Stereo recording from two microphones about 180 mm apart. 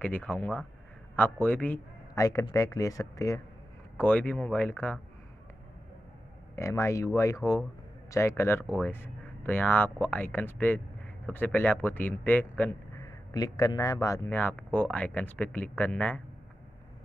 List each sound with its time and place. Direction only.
0.0 s a man's voice: 10° left (ahead or behind)
6.5 s a man's voice: 15° left (ahead or behind)